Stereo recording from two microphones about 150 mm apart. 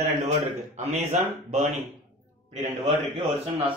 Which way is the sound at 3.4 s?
35° right (ahead or behind).